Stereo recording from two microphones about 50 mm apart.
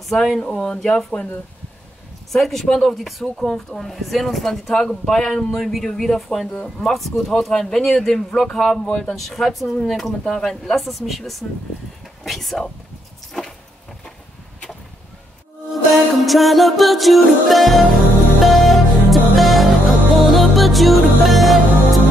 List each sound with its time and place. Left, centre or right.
0.0 s speech: centre
0.4 s speech: centre
2.3 s speech: centre
5.6 s speech: centre
16.3 s music: centre